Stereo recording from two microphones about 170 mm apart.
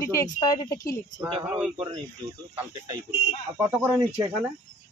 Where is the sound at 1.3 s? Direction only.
30° right (ahead or behind).